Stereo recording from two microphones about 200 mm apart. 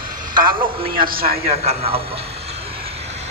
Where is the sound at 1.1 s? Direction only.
50° right (ahead or behind).